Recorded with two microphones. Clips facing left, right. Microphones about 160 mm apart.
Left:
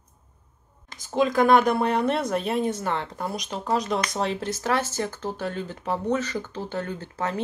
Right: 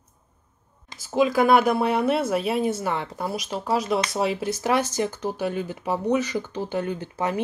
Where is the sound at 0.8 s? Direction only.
5° right (ahead or behind).